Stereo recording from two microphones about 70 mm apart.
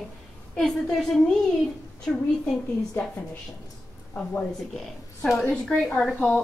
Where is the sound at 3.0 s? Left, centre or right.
Left.